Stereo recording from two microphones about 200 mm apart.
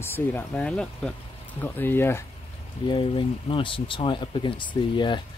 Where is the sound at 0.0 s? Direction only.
10° left (ahead or behind).